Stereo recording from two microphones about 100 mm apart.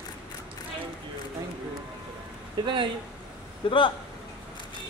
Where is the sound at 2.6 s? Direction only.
55° right (ahead or behind).